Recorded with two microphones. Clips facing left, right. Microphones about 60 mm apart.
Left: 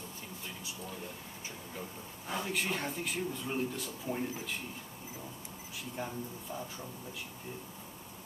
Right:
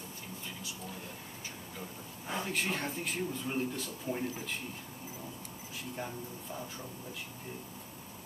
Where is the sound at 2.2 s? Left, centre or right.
Centre.